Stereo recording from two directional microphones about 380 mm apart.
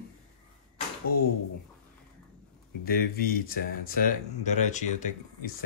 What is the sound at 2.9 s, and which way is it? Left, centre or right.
Speech, left.